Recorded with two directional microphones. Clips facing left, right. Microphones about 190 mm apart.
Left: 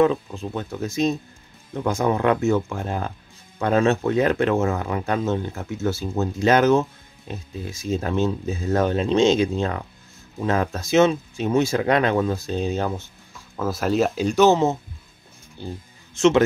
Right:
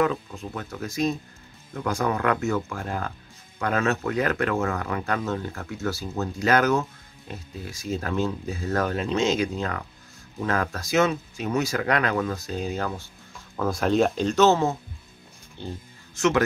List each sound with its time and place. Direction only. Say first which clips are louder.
0.0 s speech: left 5 dB; 25° left (ahead or behind)
13.6 s speech: even; 5° left (ahead or behind)
16.2 s speech: left 5 dB; 25° left (ahead or behind)